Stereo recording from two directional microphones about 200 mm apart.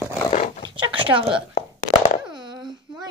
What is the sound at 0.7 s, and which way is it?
Speech, 25° right (ahead or behind).